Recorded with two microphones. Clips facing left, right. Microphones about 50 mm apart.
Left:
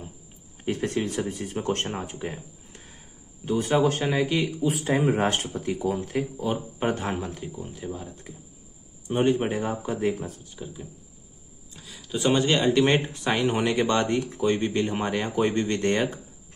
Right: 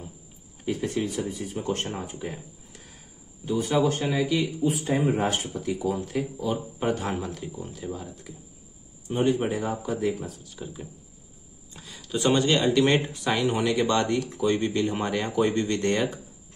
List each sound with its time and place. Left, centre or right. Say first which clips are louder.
0.7 s speech: left 1 dB; left
2.1 s a sound: left 1 dB; left
3.8 s speech: left 1 dB; left
5.5 s speech: left 1 dB; left; by 8.1 s centre
9.5 s speech: even; left
10.6 s a sound: right 1 dB; centre
12.4 s speech: left 1 dB; left